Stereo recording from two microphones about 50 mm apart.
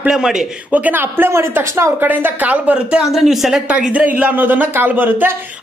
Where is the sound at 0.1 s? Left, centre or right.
Centre.